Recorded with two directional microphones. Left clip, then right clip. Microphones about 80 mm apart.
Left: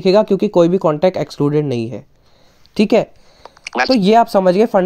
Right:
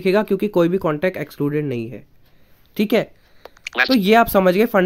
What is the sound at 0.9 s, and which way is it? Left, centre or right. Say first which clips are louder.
Speech: left 6 dB; left.